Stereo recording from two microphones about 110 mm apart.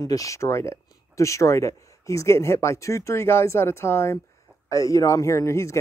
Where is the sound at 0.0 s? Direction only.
30° left (ahead or behind).